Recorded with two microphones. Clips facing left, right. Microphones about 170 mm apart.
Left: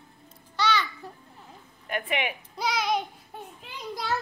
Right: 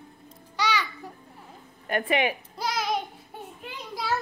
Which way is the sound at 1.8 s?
40° right (ahead or behind).